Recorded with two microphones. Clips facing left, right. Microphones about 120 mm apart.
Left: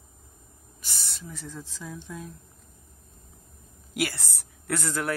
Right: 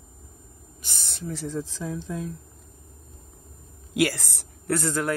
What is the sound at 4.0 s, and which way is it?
Speech, 90° right.